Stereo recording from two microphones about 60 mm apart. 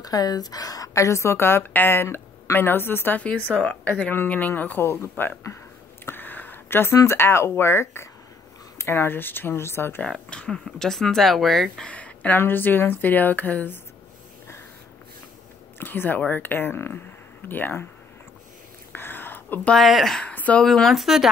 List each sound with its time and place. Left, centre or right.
0.0 s a woman's voice: left
3.4 s a woman's voice: left
6.0 s a sound: left
7.1 s a woman's voice: left
10.0 s speech: centre
11.8 s a sound: left
12.4 s a woman's voice: left
15.8 s a woman's voice: left
18.9 s a sound: left
19.7 s speech: centre
20.3 s a sound: left
20.6 s speech: centre